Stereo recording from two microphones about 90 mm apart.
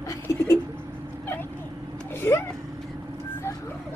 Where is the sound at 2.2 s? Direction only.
25° left (ahead or behind).